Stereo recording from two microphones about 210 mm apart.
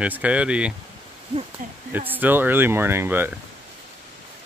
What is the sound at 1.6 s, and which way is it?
Speech, 40° right (ahead or behind).